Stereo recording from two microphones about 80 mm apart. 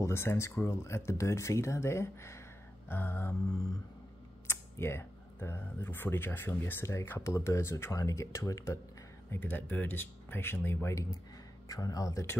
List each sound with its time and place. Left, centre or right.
0.0 s speech: left
4.5 s speech: left
9.3 s speech: left
11.7 s speech: left